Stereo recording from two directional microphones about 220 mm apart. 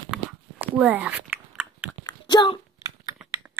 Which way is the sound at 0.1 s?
Centre (ahead or behind).